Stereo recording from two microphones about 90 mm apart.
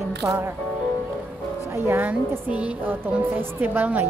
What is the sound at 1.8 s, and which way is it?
A woman's voice, 25° right (ahead or behind).